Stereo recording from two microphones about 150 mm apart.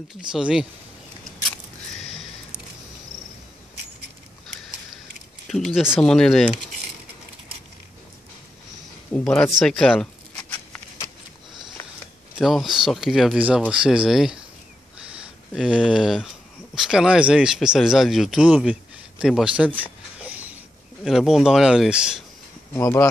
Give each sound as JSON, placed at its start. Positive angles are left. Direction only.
{"t": 0.3, "sound": "speech", "side_deg": -5}
{"t": 5.5, "sound": "speech", "side_deg": -5}
{"t": 9.1, "sound": "speech", "side_deg": 5}
{"t": 10.5, "sound": "a sound", "side_deg": 10}
{"t": 12.4, "sound": "speech", "side_deg": 0}
{"t": 15.5, "sound": "speech", "side_deg": -5}
{"t": 19.8, "sound": "a sound", "side_deg": -10}
{"t": 21.0, "sound": "speech", "side_deg": 0}
{"t": 22.8, "sound": "speech", "side_deg": 15}